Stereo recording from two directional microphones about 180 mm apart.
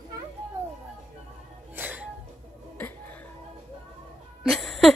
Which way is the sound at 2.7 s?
10° left (ahead or behind).